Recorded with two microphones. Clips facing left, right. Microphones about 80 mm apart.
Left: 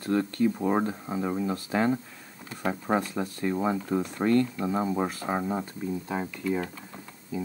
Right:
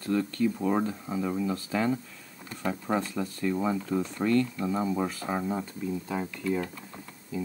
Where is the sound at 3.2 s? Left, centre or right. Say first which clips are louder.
Left 1 dB; left.